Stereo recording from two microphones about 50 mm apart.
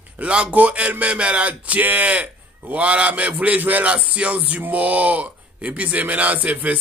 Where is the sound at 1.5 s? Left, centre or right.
Right.